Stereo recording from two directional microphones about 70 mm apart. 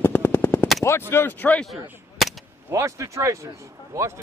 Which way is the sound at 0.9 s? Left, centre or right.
Left.